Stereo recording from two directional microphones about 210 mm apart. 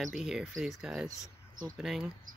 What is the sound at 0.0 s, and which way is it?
Speech, centre (ahead or behind).